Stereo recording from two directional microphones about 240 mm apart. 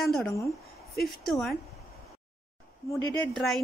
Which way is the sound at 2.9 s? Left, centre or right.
Centre.